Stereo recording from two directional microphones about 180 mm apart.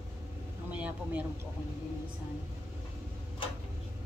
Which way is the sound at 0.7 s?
10° right (ahead or behind).